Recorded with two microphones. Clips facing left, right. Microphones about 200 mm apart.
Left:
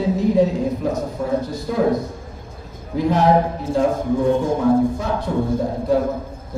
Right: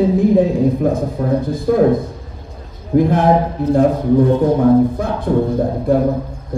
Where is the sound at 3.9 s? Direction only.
50° left (ahead or behind).